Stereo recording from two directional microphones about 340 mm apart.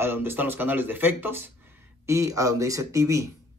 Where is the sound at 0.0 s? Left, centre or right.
Centre.